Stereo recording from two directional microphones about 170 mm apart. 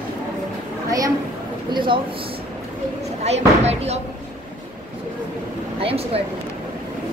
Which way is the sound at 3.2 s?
40° right (ahead or behind).